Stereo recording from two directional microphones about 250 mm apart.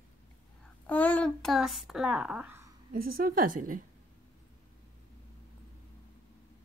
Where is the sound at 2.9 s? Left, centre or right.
Right.